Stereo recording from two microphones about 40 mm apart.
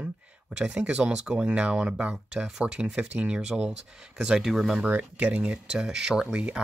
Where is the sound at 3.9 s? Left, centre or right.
Centre.